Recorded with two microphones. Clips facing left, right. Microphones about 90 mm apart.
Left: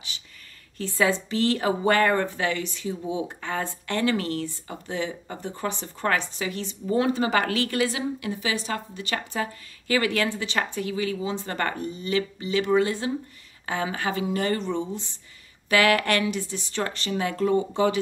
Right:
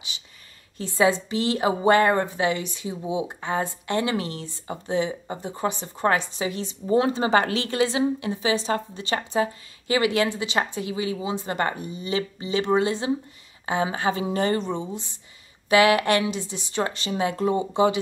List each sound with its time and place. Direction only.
0.7 s a woman's voice: 20° right (ahead or behind)